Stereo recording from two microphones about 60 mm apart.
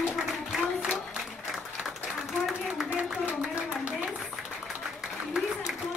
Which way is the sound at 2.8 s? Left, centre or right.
Right.